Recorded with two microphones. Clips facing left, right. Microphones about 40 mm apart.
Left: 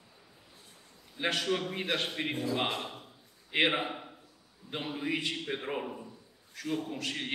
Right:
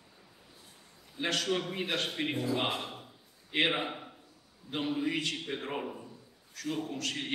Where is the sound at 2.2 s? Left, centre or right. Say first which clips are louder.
Even; centre.